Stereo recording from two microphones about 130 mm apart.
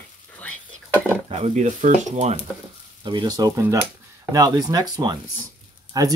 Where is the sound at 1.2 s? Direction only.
55° right (ahead or behind).